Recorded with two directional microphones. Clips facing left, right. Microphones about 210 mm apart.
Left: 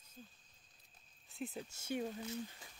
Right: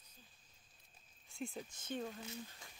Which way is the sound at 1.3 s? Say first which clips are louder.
Left 1 dB; centre (ahead or behind).